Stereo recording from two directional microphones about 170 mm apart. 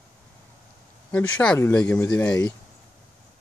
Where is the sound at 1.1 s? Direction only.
5° left (ahead or behind).